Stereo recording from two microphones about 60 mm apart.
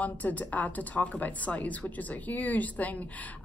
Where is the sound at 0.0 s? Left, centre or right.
Left.